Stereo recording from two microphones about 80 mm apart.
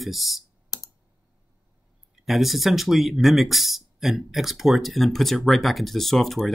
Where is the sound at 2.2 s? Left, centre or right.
Centre.